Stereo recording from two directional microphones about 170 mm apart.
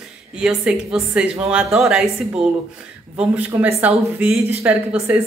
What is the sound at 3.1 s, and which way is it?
Speech, 10° right (ahead or behind).